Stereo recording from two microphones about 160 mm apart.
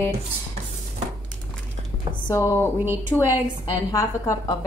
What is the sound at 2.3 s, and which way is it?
Speech, 15° left (ahead or behind).